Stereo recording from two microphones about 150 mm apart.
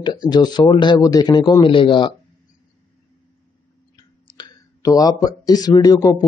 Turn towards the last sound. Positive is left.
turn(degrees=25)  # may be behind; listen again after turning